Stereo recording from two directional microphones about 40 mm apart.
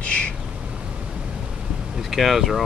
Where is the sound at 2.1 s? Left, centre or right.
Centre.